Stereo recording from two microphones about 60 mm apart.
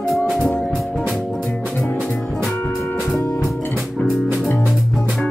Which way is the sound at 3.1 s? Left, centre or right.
Left.